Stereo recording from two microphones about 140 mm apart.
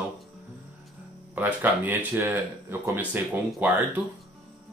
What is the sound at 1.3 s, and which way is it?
Speech, 15° right (ahead or behind).